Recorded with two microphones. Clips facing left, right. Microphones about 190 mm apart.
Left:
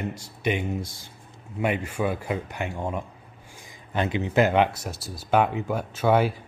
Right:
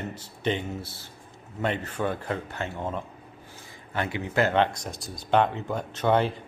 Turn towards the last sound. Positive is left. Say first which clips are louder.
# left 2 dB
turn(degrees=5)  # may be behind; listen again after turning